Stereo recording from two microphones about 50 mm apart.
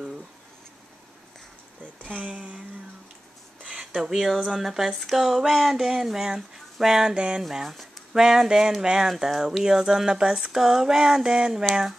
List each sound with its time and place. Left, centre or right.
2.0 s speech: right
3.8 s speech: centre
7.4 s speech: centre